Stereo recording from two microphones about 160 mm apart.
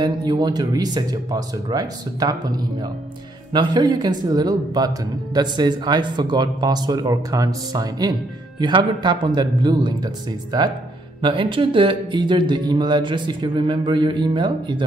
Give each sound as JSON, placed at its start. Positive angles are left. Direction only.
{"t": 0.0, "sound": "a man's voice", "side_deg": -25}